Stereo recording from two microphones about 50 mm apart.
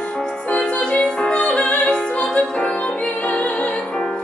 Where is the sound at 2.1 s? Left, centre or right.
Left.